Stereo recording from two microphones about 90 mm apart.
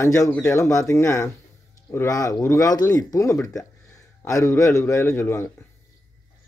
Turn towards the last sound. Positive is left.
turn(degrees=25)  # may be behind; listen again after turning